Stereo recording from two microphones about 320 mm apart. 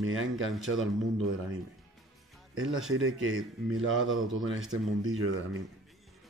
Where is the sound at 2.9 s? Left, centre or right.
Right.